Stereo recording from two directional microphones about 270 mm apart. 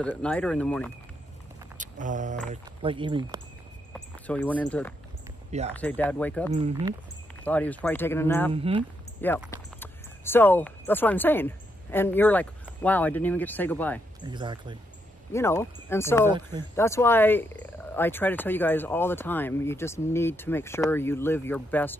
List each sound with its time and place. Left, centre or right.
0.0 s speech: centre
1.8 s speech: right
3.9 s speech: centre
8.5 s speech: right
9.5 s speech: centre
14.2 s speech: centre
15.3 s speech: centre